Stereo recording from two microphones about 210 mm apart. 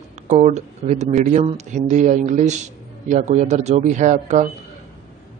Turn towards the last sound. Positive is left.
turn(degrees=-35)  # may be behind; listen again after turning